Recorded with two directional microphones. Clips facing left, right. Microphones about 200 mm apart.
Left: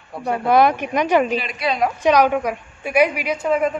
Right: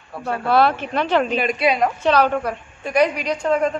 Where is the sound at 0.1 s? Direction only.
15° left (ahead or behind).